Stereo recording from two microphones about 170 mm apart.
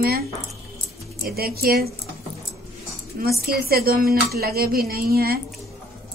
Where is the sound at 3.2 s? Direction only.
60° right (ahead or behind).